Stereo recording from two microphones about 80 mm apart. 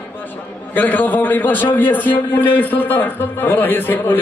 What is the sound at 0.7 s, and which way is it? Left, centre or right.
A man's voice, left.